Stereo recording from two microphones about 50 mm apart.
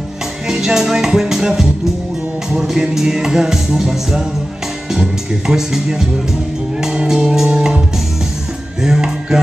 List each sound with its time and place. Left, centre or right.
0.5 s music: centre
8.8 s music: centre